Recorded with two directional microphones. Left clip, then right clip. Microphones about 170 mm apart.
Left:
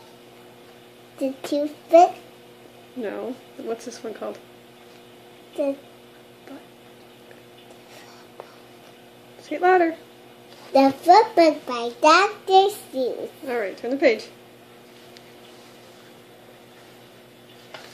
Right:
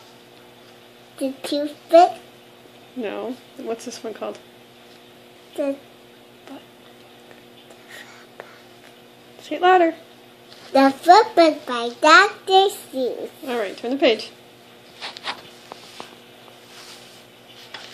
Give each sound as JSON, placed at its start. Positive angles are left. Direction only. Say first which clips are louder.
{"t": 1.2, "sound": "a child's voice", "louder": "even", "side_deg": 5}
{"t": 3.0, "sound": "speech", "louder": "right 2 dB", "side_deg": -10}
{"t": 9.5, "sound": "a child's voice", "louder": "right 3 dB", "side_deg": -10}
{"t": 13.5, "sound": "speech", "louder": "right 1 dB", "side_deg": -15}